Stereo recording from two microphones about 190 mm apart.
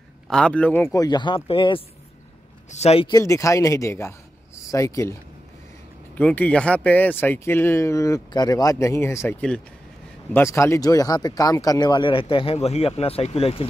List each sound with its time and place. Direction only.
0.3 s speech: 5° left (ahead or behind)
1.0 s speech: 25° left (ahead or behind)
3.1 s speech: 15° left (ahead or behind)
6.1 s speech: 10° left (ahead or behind); by 13.7 s 30° left (ahead or behind)